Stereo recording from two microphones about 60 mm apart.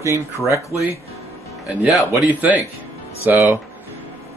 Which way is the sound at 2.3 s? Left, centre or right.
Right.